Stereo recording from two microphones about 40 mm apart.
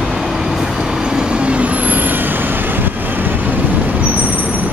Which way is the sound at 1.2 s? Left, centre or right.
Right.